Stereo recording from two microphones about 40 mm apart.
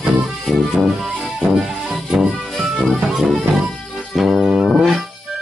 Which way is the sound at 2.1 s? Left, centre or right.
Centre.